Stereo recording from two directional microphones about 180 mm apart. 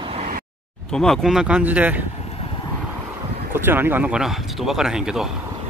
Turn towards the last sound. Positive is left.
turn(degrees=-5)  # may be behind; listen again after turning